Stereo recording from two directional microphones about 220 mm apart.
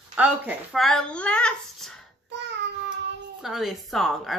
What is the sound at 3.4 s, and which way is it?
Mantra, centre (ahead or behind).